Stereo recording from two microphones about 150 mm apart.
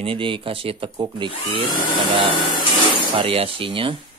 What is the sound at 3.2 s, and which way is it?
Speech, 40° right (ahead or behind).